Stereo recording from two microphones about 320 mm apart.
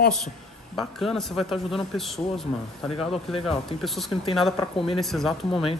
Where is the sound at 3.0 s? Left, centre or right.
Centre.